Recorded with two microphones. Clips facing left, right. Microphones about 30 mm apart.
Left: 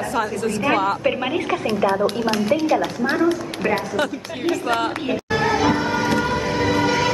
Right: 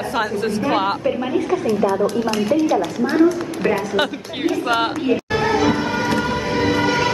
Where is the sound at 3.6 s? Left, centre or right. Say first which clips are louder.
Right 2 dB; right.